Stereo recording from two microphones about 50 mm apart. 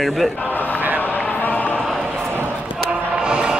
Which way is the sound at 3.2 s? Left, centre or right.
Centre.